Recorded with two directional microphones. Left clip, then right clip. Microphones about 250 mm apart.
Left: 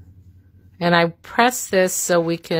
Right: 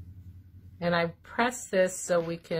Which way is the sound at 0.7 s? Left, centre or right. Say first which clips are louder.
Left 11 dB; left.